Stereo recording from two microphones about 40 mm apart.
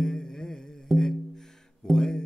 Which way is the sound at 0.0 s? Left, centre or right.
Centre.